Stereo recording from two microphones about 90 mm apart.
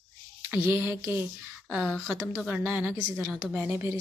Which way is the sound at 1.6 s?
10° right (ahead or behind).